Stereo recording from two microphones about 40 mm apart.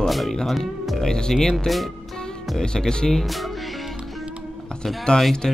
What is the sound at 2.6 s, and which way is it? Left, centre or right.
Speech, centre.